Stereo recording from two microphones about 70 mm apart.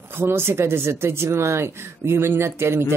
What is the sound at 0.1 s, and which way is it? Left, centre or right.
Speech, right.